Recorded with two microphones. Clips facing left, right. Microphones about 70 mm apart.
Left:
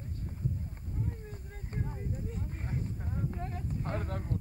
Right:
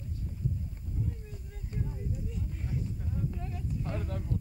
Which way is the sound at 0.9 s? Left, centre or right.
Left.